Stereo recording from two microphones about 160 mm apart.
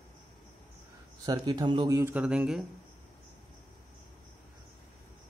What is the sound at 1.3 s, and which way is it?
Speech, 25° right (ahead or behind).